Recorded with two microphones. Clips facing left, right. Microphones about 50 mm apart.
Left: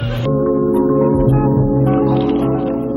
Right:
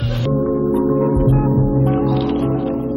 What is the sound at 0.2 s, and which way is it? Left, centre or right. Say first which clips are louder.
Music: left 3 dB; centre.